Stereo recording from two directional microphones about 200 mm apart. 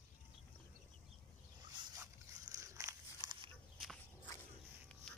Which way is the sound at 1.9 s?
15° right (ahead or behind).